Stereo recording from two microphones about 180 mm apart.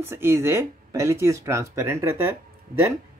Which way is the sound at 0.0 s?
15° right (ahead or behind).